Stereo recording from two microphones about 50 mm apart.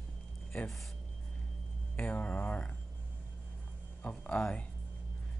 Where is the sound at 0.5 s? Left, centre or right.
Left.